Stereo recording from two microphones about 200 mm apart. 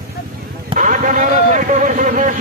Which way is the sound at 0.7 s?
40° right (ahead or behind).